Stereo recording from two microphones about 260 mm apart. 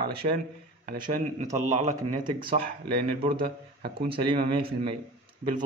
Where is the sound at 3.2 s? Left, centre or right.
Right.